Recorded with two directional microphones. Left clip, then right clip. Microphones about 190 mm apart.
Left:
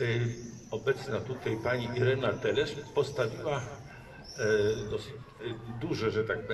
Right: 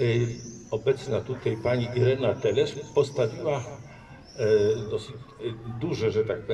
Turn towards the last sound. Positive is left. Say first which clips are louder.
# right 5 dB
turn(degrees=-15)  # may be behind; listen again after turning